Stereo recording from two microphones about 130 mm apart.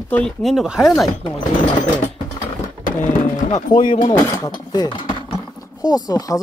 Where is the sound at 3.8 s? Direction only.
35° left (ahead or behind).